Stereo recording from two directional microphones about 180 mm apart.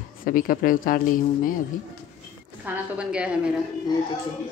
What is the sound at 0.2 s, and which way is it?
Speech, 50° left (ahead or behind).